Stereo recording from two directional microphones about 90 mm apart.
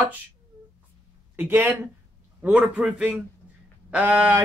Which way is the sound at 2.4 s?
15° right (ahead or behind).